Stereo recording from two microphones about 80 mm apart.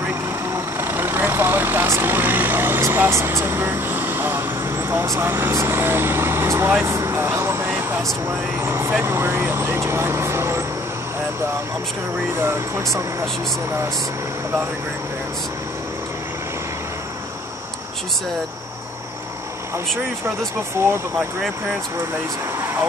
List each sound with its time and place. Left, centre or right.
0.5 s vehicle: right
5.1 s speech: right
12.4 s speech: right